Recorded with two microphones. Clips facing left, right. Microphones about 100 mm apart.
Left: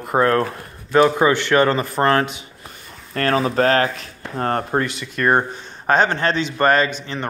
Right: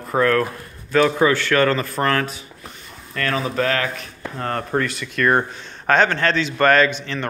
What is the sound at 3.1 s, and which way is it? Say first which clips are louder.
Speech: left 4 dB; 40° left (ahead or behind).